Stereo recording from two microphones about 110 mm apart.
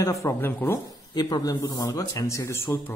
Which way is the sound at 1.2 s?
35° left (ahead or behind).